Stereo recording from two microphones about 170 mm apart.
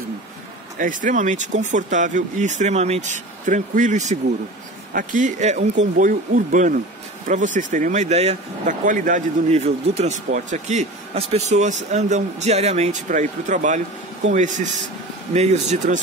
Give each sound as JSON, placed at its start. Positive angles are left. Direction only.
{"t": 0.7, "sound": "speech", "side_deg": -50}